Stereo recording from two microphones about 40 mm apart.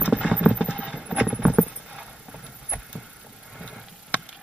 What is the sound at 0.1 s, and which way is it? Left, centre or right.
Clip-clop, right.